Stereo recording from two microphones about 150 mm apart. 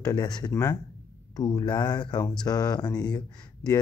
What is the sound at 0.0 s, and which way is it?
Speech, 25° left (ahead or behind).